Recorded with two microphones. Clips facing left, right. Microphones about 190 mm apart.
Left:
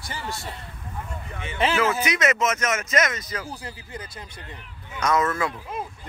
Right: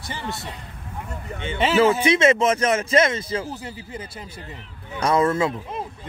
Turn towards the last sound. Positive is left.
turn(degrees=-25)  # may be behind; listen again after turning